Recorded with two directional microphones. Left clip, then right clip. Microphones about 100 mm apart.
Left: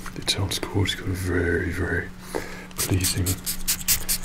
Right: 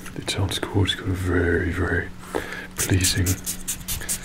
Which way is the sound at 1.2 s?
45° left (ahead or behind).